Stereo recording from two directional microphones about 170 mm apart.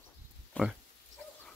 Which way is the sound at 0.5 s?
10° left (ahead or behind).